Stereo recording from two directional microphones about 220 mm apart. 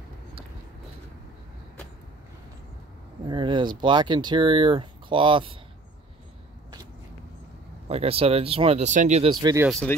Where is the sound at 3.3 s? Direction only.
20° right (ahead or behind).